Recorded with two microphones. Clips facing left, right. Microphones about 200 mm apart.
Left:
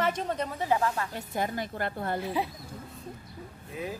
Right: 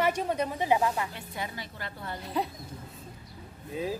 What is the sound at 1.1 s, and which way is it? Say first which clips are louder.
A woman's voice: left 6 dB; 45° left (ahead or behind).